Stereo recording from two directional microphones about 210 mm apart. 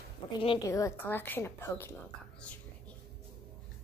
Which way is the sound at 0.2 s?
25° left (ahead or behind).